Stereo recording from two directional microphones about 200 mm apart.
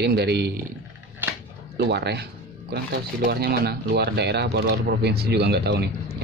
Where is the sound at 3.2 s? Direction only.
50° right (ahead or behind).